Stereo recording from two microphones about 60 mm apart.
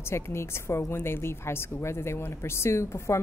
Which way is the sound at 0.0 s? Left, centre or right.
Left.